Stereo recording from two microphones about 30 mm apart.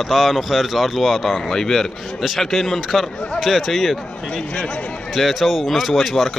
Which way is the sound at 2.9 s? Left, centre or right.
Centre.